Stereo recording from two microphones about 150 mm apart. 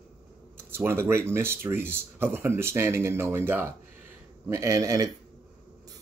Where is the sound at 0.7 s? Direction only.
15° right (ahead or behind).